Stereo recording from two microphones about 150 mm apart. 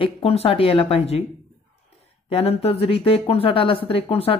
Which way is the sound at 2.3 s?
45° left (ahead or behind).